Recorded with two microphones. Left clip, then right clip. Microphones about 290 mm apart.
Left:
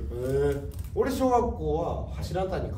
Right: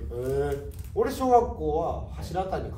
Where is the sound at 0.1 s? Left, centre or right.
Centre.